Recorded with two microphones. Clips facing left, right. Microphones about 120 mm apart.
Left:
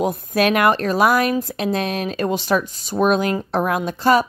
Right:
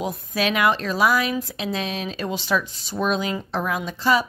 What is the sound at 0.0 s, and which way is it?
Speech, 55° left (ahead or behind).